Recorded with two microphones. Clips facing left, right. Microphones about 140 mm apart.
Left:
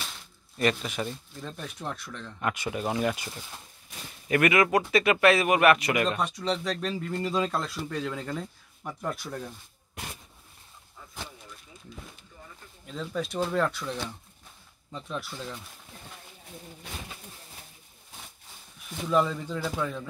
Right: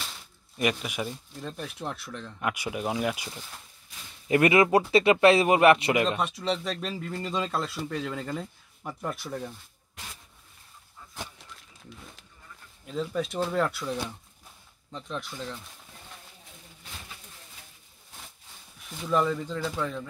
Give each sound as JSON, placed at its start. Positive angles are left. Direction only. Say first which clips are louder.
{"t": 0.6, "sound": "speech", "louder": "left 1 dB", "side_deg": -10}
{"t": 4.3, "sound": "speech", "louder": "right 2 dB", "side_deg": -25}
{"t": 6.0, "sound": "speech", "louder": "even", "side_deg": -5}
{"t": 12.8, "sound": "speech", "louder": "right 3 dB", "side_deg": -5}
{"t": 14.9, "sound": "speech", "louder": "even", "side_deg": 5}
{"t": 18.9, "sound": "speech", "louder": "even", "side_deg": 0}